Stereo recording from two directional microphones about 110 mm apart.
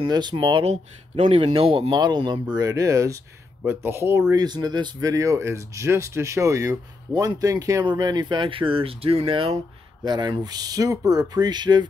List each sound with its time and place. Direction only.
0.0 s speech: 40° right (ahead or behind)
0.7 s speech: 60° right (ahead or behind)
1.9 s speech: 40° right (ahead or behind)
2.5 s speech: 30° right (ahead or behind)
4.3 s speech: 35° right (ahead or behind)
7.8 s speech: 40° right (ahead or behind)
10.0 s speech: 40° right (ahead or behind)